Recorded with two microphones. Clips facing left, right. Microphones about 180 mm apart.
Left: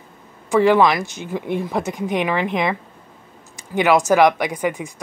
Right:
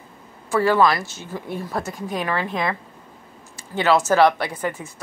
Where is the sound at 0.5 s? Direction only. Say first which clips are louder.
Left 3 dB; 15° left (ahead or behind).